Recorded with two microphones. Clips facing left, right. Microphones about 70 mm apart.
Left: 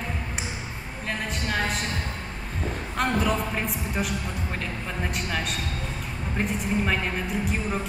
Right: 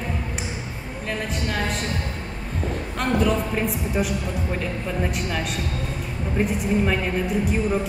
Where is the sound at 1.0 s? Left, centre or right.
Centre.